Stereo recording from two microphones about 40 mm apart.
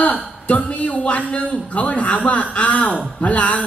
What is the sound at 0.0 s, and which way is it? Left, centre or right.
A man's voice, left.